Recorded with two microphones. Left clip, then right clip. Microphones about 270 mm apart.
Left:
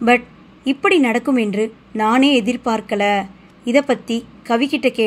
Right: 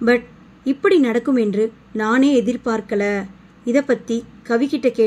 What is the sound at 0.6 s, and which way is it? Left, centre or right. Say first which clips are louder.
A woman's voice: left 1 dB; left.